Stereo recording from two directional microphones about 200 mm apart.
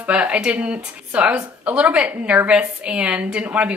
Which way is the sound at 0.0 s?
5° right (ahead or behind).